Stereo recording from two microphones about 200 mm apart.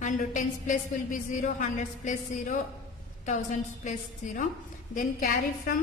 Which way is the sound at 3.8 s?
40° left (ahead or behind).